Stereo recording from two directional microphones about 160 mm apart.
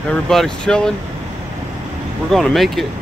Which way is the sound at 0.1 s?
5° left (ahead or behind).